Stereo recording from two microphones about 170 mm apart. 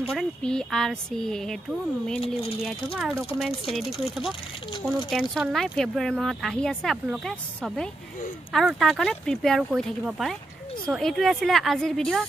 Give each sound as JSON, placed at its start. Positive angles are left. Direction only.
{"t": 0.1, "sound": "speech", "side_deg": 5}
{"t": 2.2, "sound": "speech", "side_deg": 35}
{"t": 2.6, "sound": "speech", "side_deg": -5}